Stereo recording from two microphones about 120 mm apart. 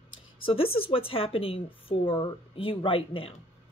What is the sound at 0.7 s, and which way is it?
A woman's voice, 50° left (ahead or behind).